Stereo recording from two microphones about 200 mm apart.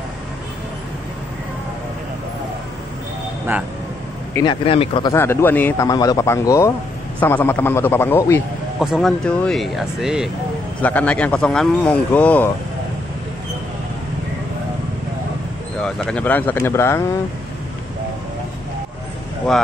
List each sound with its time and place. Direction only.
4.3 s speech: 20° left (ahead or behind)
5.1 s speech: 10° left (ahead or behind)
8.7 s speech: centre (ahead or behind)
15.8 s speech: 5° left (ahead or behind)